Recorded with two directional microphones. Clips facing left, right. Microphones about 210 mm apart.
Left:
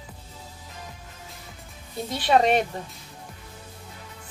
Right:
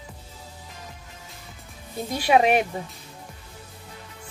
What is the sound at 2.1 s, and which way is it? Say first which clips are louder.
Speech: right 1 dB; 10° right (ahead or behind).